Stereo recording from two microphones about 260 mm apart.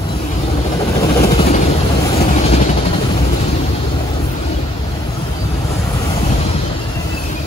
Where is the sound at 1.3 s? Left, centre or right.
Left.